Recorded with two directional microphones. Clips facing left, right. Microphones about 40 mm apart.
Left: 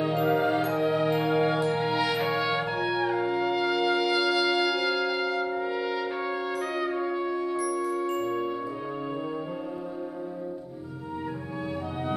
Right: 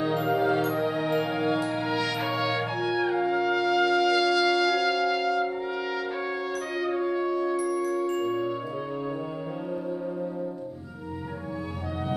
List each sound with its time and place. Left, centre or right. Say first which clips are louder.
0.1 s music: even; left
2.0 s trumpet: left 1 dB; centre